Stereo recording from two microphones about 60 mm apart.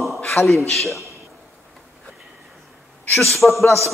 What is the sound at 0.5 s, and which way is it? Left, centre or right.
Speech, centre.